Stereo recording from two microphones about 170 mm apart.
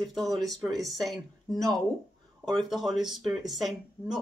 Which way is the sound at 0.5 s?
20° right (ahead or behind).